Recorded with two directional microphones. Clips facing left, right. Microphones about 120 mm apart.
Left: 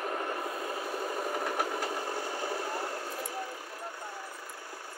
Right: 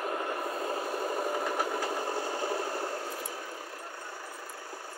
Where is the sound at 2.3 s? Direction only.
25° right (ahead or behind).